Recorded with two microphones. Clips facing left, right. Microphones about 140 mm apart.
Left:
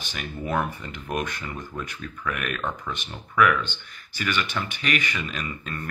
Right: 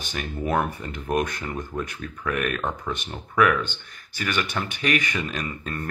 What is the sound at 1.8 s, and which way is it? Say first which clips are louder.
Speech: right 3 dB; 35° right (ahead or behind).